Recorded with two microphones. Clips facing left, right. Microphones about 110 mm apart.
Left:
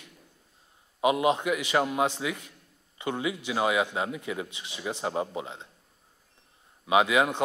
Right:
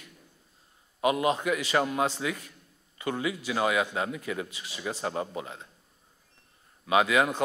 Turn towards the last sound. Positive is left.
turn(degrees=20)  # may be behind; listen again after turning